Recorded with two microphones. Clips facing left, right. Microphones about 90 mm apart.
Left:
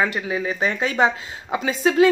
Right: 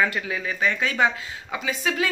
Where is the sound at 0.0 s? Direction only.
25° left (ahead or behind).